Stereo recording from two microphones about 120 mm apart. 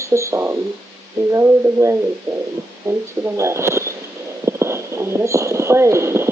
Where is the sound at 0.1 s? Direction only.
25° right (ahead or behind).